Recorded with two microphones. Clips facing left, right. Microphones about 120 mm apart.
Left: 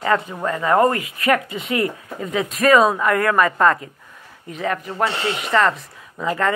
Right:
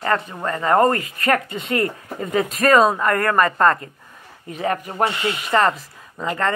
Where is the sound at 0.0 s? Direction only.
10° left (ahead or behind).